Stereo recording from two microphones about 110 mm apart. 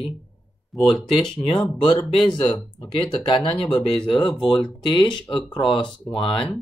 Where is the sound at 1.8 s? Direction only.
45° left (ahead or behind).